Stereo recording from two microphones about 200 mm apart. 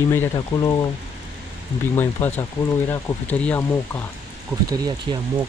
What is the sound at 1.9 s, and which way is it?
Speech, 10° left (ahead or behind).